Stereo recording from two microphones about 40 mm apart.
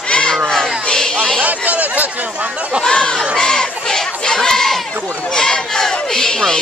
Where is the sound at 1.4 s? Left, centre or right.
Right.